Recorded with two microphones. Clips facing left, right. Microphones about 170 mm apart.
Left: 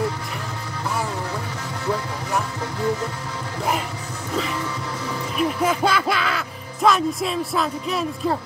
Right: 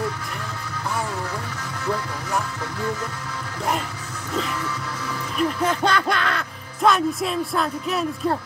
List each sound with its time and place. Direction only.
4.6 s music: 30° left (ahead or behind)
5.4 s speech: 10° left (ahead or behind)